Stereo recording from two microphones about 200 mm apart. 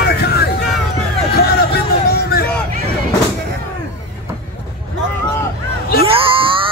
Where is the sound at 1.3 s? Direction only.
50° left (ahead or behind).